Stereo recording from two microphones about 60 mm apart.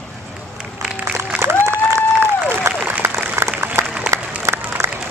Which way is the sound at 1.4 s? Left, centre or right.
Right.